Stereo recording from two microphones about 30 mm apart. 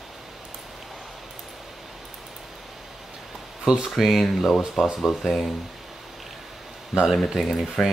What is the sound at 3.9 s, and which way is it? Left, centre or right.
Speech, centre.